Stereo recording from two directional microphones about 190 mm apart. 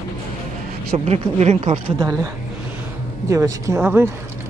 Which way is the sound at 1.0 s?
35° right (ahead or behind).